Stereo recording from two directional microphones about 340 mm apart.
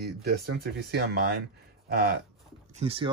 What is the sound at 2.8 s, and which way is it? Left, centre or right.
Speech, centre.